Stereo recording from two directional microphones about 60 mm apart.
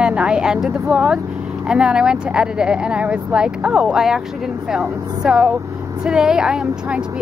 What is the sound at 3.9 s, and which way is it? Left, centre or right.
Speech, centre.